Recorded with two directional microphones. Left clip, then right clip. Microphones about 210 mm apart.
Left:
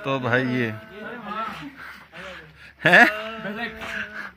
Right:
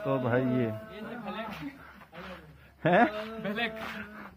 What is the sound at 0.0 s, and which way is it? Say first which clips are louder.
Speech: left 6 dB; 10° left (ahead or behind).